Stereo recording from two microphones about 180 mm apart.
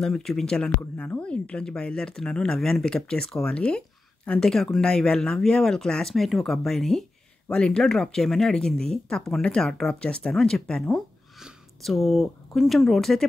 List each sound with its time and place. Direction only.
0.0 s speech: centre (ahead or behind)